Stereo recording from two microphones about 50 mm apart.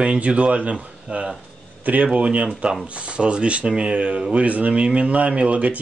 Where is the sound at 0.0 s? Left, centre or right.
Right.